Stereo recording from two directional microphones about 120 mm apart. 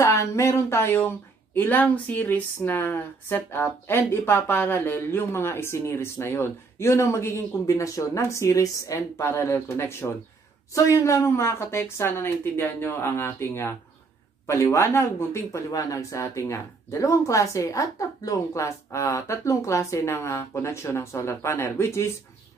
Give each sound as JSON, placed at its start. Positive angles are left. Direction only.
{"t": 0.0, "sound": "speech", "side_deg": 25}